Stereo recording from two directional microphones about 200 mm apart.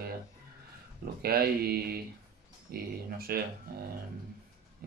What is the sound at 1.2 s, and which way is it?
Speech, 50° right (ahead or behind).